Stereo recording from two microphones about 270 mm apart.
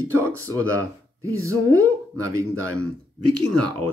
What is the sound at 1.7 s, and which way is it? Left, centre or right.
Speech, right.